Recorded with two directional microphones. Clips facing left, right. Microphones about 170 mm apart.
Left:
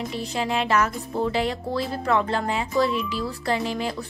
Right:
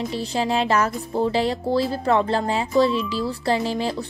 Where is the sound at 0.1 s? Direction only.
30° right (ahead or behind).